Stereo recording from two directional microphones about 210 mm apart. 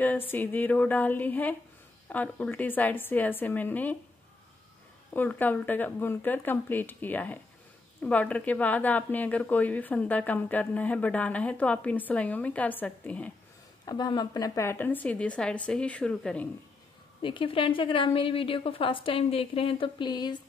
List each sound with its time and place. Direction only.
0.3 s a woman's voice: 10° left (ahead or behind)
5.1 s a woman's voice: 10° left (ahead or behind)
13.8 s a woman's voice: 20° left (ahead or behind)
17.2 s a woman's voice: 25° left (ahead or behind)